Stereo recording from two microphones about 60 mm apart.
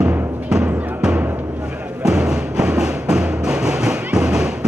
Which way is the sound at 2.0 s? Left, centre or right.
Centre.